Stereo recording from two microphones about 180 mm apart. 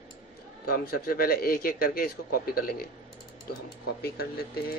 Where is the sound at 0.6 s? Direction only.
55° left (ahead or behind).